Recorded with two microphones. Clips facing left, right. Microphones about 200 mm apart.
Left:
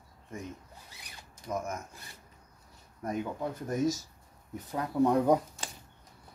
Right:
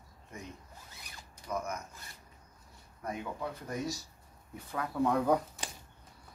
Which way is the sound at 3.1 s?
45° left (ahead or behind).